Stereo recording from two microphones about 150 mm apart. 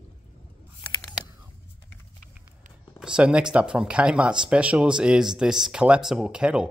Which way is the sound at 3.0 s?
5° right (ahead or behind).